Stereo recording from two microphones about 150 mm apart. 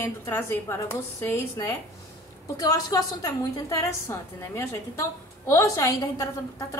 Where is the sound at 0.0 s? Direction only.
15° left (ahead or behind).